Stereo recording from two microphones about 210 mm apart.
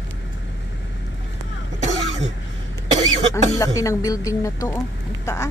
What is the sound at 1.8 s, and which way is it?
Cough, 30° right (ahead or behind).